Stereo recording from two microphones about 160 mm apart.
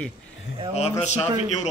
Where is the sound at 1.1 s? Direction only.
45° left (ahead or behind).